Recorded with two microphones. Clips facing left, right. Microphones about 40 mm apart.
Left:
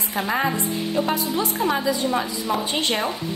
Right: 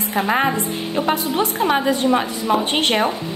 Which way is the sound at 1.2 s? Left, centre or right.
Right.